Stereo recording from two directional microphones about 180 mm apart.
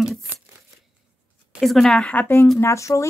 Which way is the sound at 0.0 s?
Centre (ahead or behind).